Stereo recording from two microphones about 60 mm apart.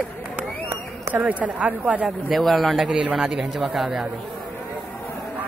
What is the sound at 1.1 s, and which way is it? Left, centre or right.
Speech, right.